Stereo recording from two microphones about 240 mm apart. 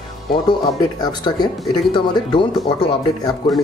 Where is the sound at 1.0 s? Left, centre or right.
Centre.